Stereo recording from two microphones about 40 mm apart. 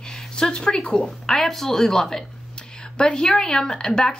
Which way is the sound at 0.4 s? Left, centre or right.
Centre.